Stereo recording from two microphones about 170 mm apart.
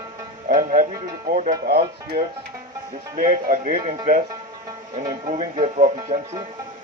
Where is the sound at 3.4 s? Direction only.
50° right (ahead or behind).